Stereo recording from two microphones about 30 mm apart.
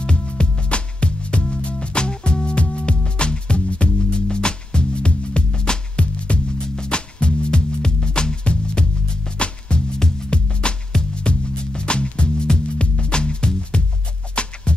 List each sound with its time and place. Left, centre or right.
0.0 s music: left
6.3 s music: left